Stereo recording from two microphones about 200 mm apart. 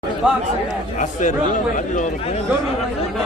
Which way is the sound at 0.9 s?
40° left (ahead or behind).